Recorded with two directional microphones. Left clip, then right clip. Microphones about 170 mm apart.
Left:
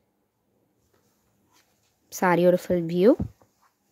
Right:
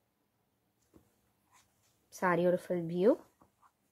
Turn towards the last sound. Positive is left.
turn(degrees=60)  # may be behind; listen again after turning